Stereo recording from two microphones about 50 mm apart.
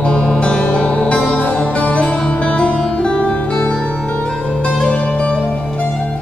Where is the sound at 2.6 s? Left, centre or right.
Left.